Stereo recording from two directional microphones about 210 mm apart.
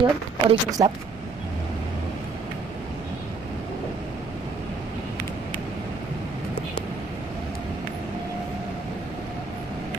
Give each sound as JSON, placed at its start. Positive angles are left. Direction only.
{"t": 0.0, "sound": "speech", "side_deg": -20}